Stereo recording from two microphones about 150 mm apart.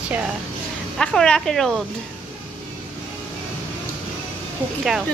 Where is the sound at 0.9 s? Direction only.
5° left (ahead or behind).